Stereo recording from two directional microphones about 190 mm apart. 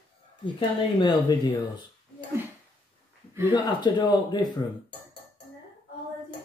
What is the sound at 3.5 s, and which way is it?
Speech, 25° left (ahead or behind).